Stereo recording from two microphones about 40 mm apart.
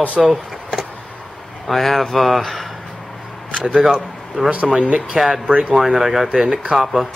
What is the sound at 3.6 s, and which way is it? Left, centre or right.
Speech, centre.